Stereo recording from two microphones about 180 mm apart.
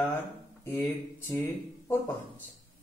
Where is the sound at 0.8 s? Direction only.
15° left (ahead or behind).